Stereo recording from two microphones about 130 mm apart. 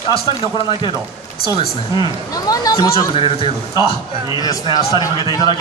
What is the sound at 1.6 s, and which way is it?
Speech, 40° left (ahead or behind).